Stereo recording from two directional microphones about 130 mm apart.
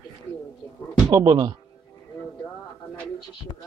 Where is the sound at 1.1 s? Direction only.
30° right (ahead or behind).